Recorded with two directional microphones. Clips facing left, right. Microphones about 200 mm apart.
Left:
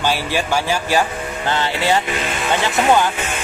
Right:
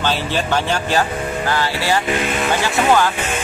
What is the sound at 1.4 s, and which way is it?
Speech, 20° left (ahead or behind).